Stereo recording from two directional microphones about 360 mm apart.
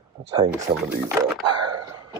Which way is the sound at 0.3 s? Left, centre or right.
Centre.